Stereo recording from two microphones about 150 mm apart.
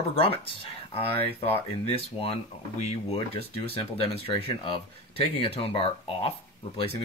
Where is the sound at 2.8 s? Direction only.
45° left (ahead or behind).